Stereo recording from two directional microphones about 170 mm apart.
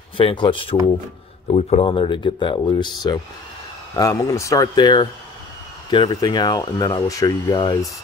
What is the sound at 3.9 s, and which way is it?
Speech, 20° left (ahead or behind).